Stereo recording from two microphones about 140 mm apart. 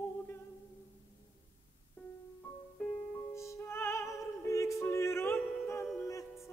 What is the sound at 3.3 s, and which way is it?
Music, 20° left (ahead or behind).